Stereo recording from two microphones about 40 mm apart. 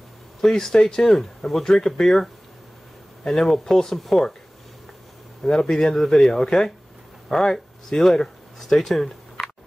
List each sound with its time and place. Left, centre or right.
0.4 s speech: centre
3.3 s speech: centre
5.4 s speech: centre